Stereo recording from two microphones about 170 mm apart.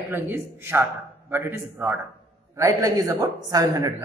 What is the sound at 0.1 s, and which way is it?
A man's voice, 15° right (ahead or behind).